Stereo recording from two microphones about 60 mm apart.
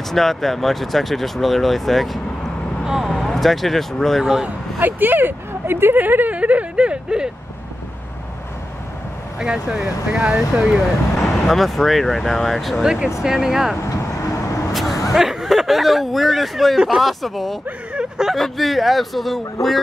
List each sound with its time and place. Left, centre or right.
0.1 s speech: centre
4.2 s speech: centre
4.7 s speech: right; by 7.2 s centre
9.4 s speech: centre
11.1 s speech: centre
12.8 s speech: centre
13.8 s vehicle: left
14.7 s vehicle: centre
15.1 s speech: centre
17.9 s speech: centre
18.3 s speech: centre